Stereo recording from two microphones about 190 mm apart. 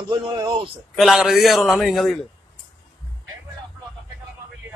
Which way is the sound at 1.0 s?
Centre (ahead or behind).